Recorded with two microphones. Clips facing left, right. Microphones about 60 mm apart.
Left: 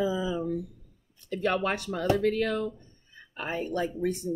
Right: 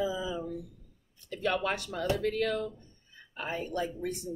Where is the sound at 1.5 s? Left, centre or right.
Left.